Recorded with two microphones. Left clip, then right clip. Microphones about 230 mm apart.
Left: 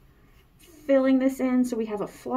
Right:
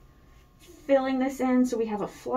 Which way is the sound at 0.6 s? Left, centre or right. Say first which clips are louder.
Left 2 dB; left.